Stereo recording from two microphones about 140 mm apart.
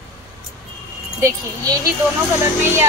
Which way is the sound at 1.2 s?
25° right (ahead or behind).